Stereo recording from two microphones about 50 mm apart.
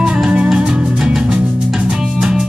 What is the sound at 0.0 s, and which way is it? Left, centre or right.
Music, centre.